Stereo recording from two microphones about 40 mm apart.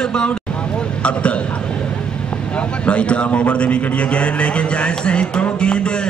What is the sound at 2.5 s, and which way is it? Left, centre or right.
A man's voice, left.